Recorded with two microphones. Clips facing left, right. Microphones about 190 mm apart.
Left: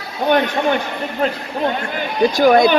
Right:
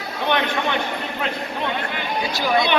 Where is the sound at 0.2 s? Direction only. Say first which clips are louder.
Left 6 dB; 40° left (ahead or behind).